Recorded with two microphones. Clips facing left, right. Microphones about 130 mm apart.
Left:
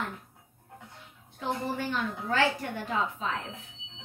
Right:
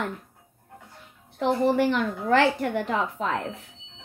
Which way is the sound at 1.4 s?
75° right (ahead or behind).